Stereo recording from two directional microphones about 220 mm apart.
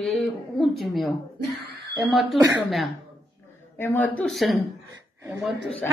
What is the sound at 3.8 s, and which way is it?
Speech, 10° left (ahead or behind).